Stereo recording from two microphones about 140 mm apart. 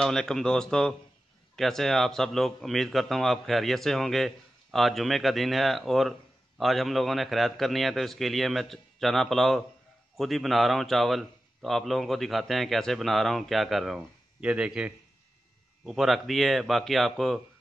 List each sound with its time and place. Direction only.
0.0 s a man's voice: 5° left (ahead or behind)